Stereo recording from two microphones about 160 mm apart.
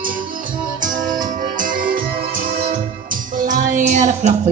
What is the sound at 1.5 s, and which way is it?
Music, 60° right (ahead or behind).